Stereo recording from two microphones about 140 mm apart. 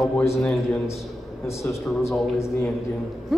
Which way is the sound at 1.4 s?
20° left (ahead or behind).